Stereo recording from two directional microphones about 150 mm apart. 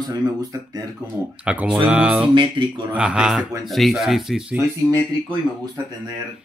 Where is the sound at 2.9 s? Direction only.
5° right (ahead or behind).